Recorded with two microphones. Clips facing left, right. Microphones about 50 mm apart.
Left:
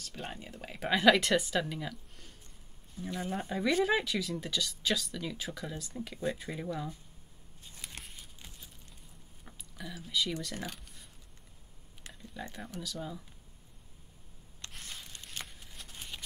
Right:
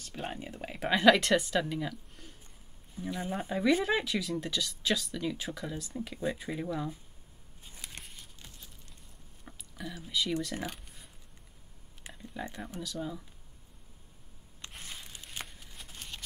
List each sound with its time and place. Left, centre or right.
0.0 s speech: centre
7.8 s a sound: centre
9.5 s speech: centre
10.5 s speech: centre
12.2 s speech: centre
12.5 s speech: centre
14.7 s a sound: centre